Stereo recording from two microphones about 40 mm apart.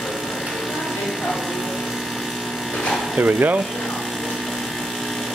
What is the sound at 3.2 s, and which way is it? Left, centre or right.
Speech, right.